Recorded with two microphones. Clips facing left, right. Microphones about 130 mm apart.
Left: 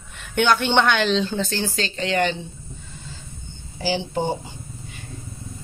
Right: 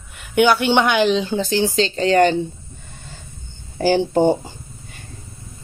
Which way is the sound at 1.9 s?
40° right (ahead or behind).